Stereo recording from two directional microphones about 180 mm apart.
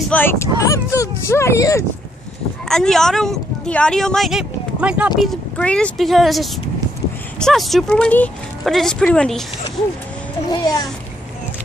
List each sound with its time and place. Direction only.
0.1 s speech: 10° left (ahead or behind)
2.7 s speech: 5° left (ahead or behind)
5.2 s speech: 5° left (ahead or behind)
10.5 s a child's voice: 20° left (ahead or behind)